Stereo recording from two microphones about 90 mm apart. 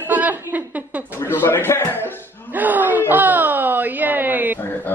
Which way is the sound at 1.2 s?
25° left (ahead or behind).